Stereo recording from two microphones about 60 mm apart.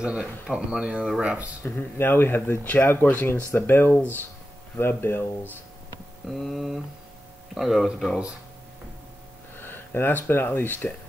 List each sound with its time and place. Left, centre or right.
0.0 s speech: centre
1.6 s speech: left
6.2 s speech: centre
9.6 s speech: left